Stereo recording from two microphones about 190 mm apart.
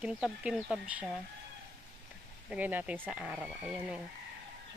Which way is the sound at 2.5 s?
10° right (ahead or behind).